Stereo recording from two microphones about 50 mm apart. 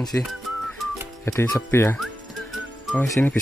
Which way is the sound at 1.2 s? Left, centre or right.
Left.